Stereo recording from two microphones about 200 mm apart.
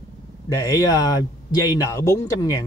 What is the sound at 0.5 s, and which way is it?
Speech, 15° left (ahead or behind).